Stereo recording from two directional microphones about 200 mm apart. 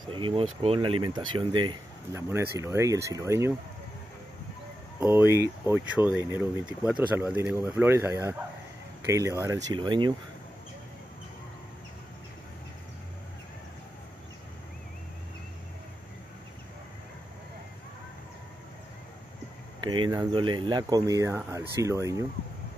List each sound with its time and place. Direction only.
0.1 s speech: 25° right (ahead or behind)
5.0 s speech: 10° right (ahead or behind)
19.8 s speech: 25° right (ahead or behind)